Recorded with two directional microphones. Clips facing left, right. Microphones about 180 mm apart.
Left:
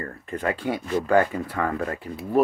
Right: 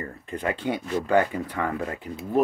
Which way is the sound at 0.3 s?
20° right (ahead or behind).